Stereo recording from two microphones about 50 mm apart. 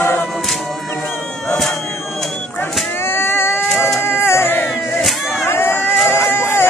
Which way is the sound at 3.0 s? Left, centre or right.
Left.